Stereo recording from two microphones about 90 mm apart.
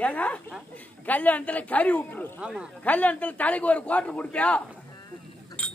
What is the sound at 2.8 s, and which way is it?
A man's voice, 15° left (ahead or behind).